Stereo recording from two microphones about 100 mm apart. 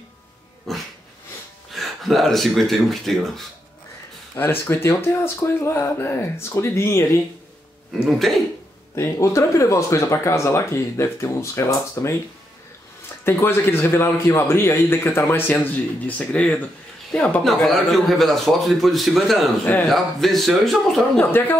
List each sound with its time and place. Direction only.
0.7 s dog: centre (ahead or behind)
1.7 s speech: centre (ahead or behind)
4.4 s a man's voice: 25° left (ahead or behind)
8.0 s a man's voice: centre (ahead or behind)
8.9 s a man's voice: 30° left (ahead or behind)
13.2 s a man's voice: 25° left (ahead or behind); by 19.5 s centre (ahead or behind)
19.6 s a man's voice: 10° left (ahead or behind)
21.3 s speech: 20° left (ahead or behind)